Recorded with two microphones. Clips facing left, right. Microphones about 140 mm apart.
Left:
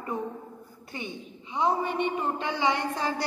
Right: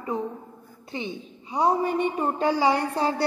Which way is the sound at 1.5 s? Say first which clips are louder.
Right 4 dB; 40° right (ahead or behind).